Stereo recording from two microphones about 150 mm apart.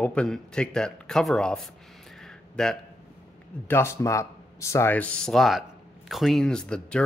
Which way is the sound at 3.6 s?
15° left (ahead or behind).